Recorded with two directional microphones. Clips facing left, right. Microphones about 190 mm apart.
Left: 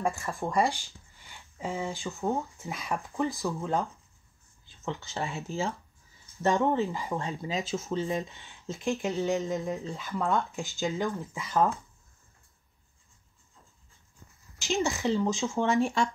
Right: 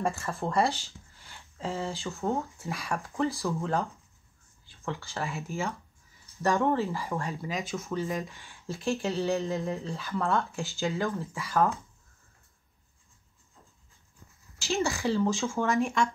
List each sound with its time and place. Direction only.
0.1 s speech: 15° left (ahead or behind)
5.2 s speech: 30° left (ahead or behind)
6.4 s speech: 20° left (ahead or behind)
14.6 s speech: 15° left (ahead or behind)
15.6 s speech: 30° left (ahead or behind)